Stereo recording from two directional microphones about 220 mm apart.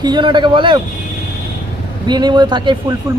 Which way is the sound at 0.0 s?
20° right (ahead or behind).